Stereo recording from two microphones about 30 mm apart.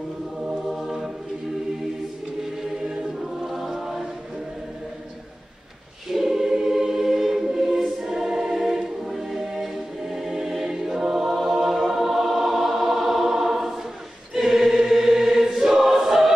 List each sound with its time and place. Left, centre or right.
0.7 s choir: centre
2.4 s choir: centre
3.4 s choir: centre
6.1 s choir: centre
11.5 s music: centre
14.3 s choir: centre